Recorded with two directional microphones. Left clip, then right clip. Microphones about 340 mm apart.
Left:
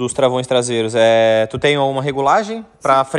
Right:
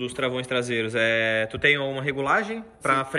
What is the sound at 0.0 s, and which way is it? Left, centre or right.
Speech, centre.